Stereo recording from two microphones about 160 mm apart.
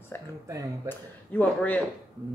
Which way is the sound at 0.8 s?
10° left (ahead or behind).